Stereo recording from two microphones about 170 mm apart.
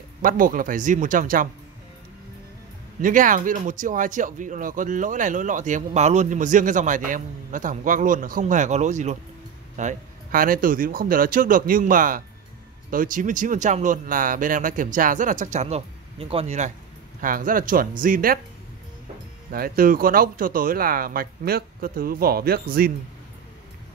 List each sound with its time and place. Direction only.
0.2 s speech: 55° right (ahead or behind)
3.0 s speech: 50° right (ahead or behind)
17.2 s speech: 55° right (ahead or behind)
19.5 s speech: 60° right (ahead or behind)